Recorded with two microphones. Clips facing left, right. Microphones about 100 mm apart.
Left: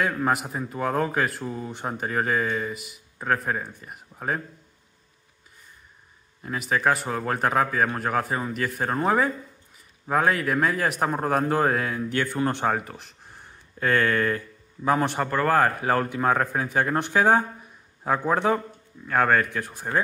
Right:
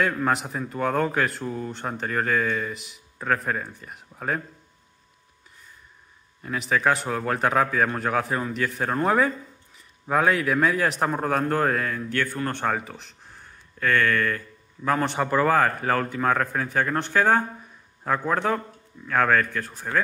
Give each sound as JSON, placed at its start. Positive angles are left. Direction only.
{"t": 0.0, "sound": "a man's voice", "side_deg": 5}
{"t": 6.4, "sound": "a man's voice", "side_deg": 5}
{"t": 12.6, "sound": "speech", "side_deg": 5}
{"t": 13.7, "sound": "speech", "side_deg": 30}
{"t": 14.9, "sound": "a man's voice", "side_deg": 5}